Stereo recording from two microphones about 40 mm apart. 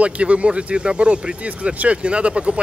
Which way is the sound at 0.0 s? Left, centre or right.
Right.